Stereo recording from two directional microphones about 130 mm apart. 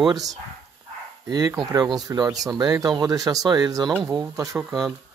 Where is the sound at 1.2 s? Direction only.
30° right (ahead or behind).